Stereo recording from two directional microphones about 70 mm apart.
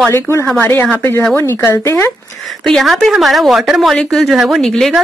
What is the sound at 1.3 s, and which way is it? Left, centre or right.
Speech, left.